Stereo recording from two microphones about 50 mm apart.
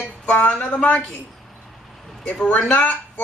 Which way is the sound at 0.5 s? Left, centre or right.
Left.